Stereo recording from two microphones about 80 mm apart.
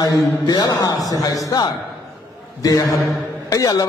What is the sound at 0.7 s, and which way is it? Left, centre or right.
A man's voice, left.